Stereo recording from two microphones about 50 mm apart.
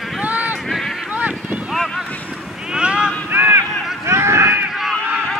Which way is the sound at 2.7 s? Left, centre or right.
Centre.